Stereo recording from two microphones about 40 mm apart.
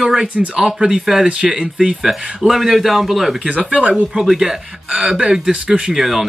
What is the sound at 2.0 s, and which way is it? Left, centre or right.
Speech, centre.